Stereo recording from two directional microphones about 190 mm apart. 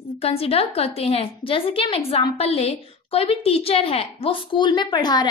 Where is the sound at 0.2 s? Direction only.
30° left (ahead or behind).